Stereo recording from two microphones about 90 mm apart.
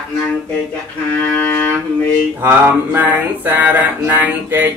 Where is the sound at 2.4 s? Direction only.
20° right (ahead or behind).